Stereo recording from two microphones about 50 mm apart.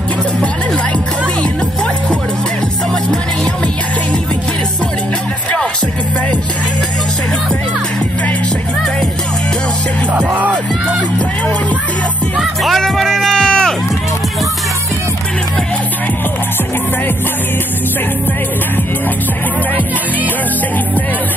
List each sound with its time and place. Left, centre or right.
10.1 s music: right
12.6 s music: centre